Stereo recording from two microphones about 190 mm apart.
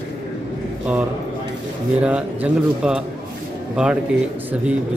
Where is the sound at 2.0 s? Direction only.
5° right (ahead or behind).